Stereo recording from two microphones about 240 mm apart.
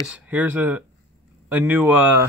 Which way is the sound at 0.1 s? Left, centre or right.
Centre.